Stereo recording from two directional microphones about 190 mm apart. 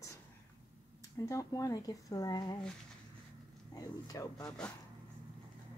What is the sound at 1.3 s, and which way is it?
Speech, 15° left (ahead or behind).